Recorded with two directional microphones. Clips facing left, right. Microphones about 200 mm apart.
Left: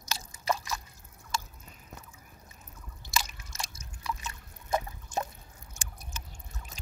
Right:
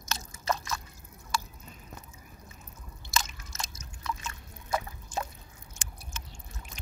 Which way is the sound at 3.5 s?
10° left (ahead or behind).